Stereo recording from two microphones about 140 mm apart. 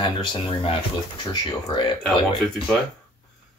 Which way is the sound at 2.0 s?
Centre (ahead or behind).